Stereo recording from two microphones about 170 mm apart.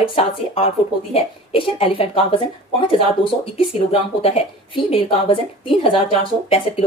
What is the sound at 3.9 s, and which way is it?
Speech, 35° left (ahead or behind).